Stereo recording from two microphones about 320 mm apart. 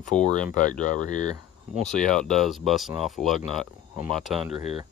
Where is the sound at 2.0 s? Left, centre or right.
Centre.